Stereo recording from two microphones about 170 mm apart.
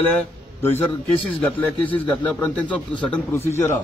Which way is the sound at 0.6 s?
10° left (ahead or behind).